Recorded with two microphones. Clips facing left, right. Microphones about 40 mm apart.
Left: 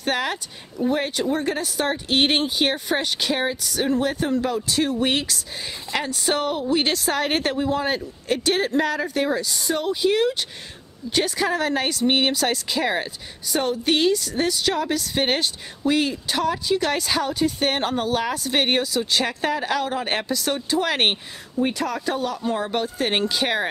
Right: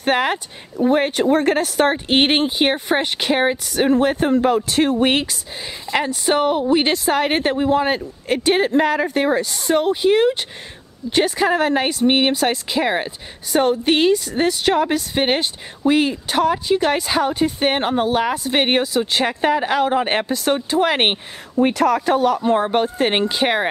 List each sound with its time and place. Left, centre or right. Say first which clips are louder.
0.0 s speech: right 6 dB; right
1.2 s speech: right 7 dB; right
1.9 s speech: right 4 dB; right
21.7 s speech: right 9 dB; right